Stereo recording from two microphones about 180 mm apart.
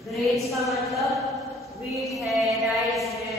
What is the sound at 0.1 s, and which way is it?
A woman's voice, centre (ahead or behind).